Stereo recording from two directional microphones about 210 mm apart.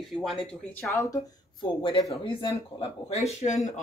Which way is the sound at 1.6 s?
25° left (ahead or behind).